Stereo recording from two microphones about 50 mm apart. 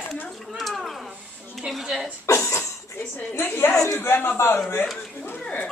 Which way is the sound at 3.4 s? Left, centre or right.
Left.